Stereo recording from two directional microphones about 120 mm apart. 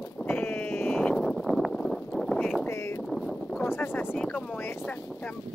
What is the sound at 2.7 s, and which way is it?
Speech, 25° left (ahead or behind).